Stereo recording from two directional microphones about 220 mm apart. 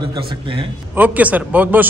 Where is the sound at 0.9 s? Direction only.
5° right (ahead or behind).